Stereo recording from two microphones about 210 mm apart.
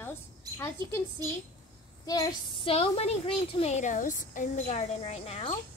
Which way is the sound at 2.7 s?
30° left (ahead or behind).